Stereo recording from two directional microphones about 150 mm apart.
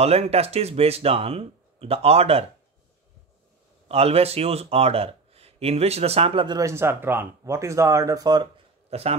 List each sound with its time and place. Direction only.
0.0 s speech: 45° right (ahead or behind)
3.9 s speech: 40° right (ahead or behind)
8.9 s speech: 40° right (ahead or behind)